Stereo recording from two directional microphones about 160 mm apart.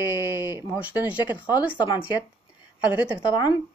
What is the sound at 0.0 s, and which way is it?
Speech, 15° right (ahead or behind).